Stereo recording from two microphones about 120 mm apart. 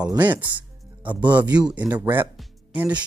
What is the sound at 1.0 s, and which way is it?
Speech, 40° right (ahead or behind).